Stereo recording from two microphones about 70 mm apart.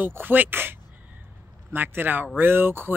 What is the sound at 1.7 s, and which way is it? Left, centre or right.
Speech, right.